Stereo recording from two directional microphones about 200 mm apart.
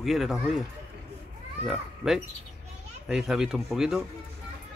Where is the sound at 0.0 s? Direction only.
Centre (ahead or behind).